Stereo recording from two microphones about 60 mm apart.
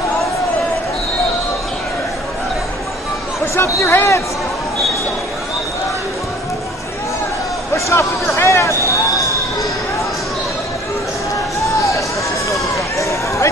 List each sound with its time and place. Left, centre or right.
3.5 s speech: left
7.7 s speech: left
12.7 s run: left